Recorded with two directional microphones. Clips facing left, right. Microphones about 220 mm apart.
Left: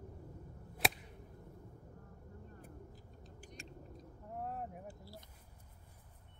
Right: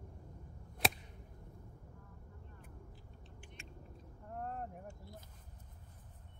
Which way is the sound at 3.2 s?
40° left (ahead or behind).